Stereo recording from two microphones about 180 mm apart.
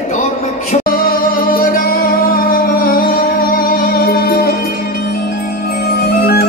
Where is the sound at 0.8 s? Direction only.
55° left (ahead or behind).